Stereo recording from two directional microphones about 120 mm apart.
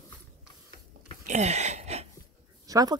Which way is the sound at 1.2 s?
70° right (ahead or behind).